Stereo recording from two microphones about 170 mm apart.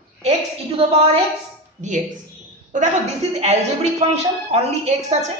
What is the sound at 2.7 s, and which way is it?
A woman's voice, 45° right (ahead or behind).